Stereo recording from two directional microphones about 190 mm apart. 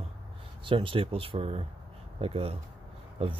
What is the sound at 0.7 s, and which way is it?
Speech, 25° right (ahead or behind).